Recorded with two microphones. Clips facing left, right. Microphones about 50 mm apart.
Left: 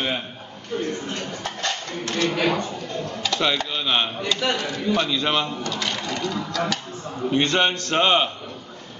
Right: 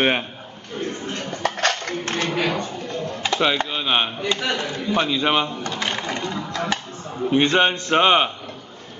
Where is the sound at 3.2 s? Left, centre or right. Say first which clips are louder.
Right 3 dB; centre.